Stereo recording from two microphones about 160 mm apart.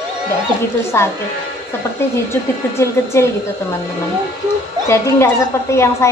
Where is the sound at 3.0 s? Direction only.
20° left (ahead or behind).